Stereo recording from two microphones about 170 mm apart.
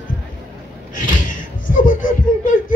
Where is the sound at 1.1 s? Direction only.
50° left (ahead or behind).